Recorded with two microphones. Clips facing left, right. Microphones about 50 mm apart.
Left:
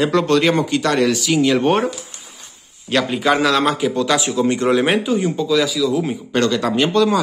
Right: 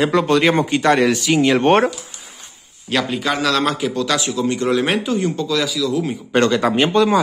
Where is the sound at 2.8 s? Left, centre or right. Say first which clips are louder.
Left 3 dB; centre.